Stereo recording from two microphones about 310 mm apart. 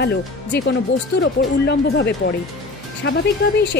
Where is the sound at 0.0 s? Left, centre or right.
Left.